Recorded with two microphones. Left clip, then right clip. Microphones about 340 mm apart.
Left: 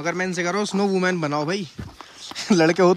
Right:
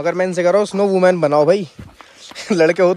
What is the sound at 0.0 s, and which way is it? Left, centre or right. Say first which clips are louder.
Speech: right 8 dB; centre.